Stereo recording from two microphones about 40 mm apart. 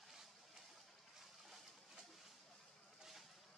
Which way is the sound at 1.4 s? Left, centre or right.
Centre.